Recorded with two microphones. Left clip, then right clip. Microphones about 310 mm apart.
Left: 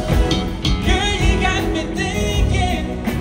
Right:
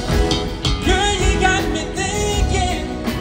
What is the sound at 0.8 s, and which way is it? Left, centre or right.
Music, right.